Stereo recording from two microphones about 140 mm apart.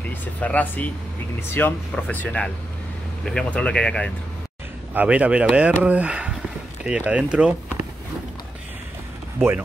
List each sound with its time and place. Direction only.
0.0 s speech: 10° left (ahead or behind)
4.9 s speech: 10° right (ahead or behind)